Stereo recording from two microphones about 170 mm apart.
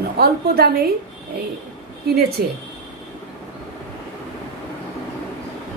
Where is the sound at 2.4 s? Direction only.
70° right (ahead or behind).